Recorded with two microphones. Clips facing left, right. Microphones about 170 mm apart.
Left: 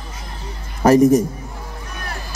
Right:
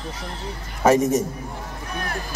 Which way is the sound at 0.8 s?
35° left (ahead or behind).